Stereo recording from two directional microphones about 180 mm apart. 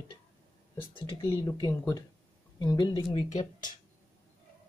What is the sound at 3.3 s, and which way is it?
Speech, 45° left (ahead or behind).